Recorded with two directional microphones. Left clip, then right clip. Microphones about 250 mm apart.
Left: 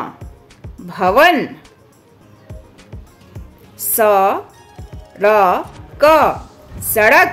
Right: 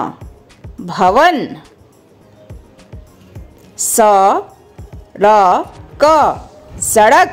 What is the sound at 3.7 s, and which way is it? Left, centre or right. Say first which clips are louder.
Speech: right 3 dB; centre.